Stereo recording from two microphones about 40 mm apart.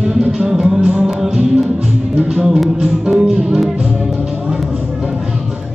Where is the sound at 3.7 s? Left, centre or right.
Right.